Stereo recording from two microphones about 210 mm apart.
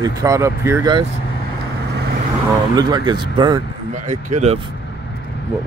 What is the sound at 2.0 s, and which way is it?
Vehicle, 55° right (ahead or behind).